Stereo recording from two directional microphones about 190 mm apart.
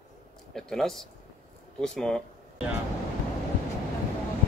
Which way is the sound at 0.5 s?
Centre (ahead or behind).